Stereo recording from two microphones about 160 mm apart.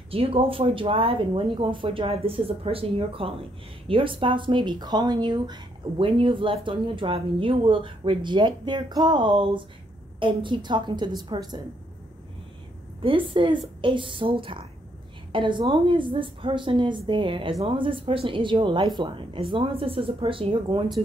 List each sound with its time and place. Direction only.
0.1 s a woman's voice: 35° right (ahead or behind)
13.0 s speech: 35° right (ahead or behind)